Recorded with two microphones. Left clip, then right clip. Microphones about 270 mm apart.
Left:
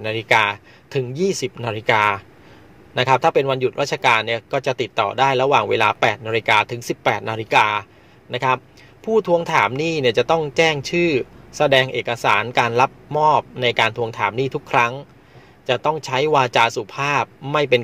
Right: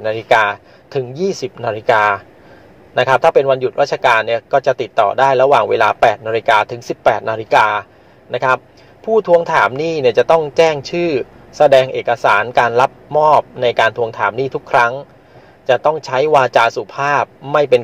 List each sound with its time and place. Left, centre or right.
0.0 s speech: left